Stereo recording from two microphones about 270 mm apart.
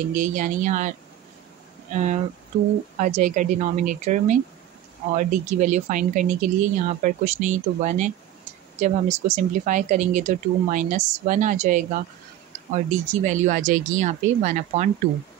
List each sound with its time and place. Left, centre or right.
0.1 s speech: right